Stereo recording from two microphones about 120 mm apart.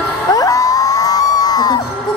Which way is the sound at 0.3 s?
30° left (ahead or behind).